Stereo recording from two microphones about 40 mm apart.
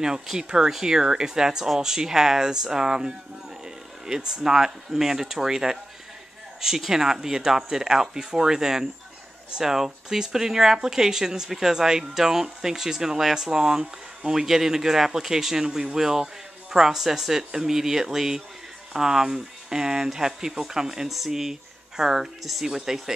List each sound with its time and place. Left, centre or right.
0.0 s speech: centre
6.9 s speech: centre